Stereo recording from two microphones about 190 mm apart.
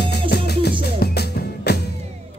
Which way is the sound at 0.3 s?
60° left (ahead or behind).